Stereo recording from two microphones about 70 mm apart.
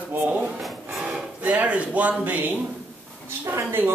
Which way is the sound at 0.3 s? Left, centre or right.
Centre.